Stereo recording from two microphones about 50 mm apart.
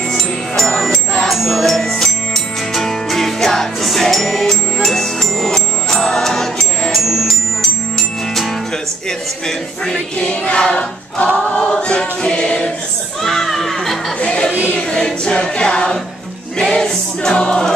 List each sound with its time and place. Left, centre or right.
0.7 s music: centre
9.8 s choir: centre
13.2 s a sound: centre
14.2 s a sound: left
14.8 s music: centre
16.5 s choir: centre